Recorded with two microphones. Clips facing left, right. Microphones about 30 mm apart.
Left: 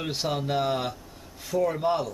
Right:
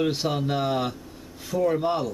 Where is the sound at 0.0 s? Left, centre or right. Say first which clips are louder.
Right 4 dB; centre.